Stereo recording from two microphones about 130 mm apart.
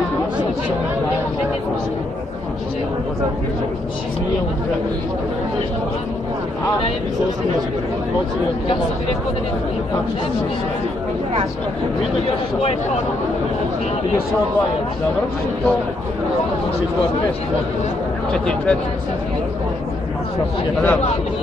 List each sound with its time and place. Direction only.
18.3 s speech: 5° left (ahead or behind)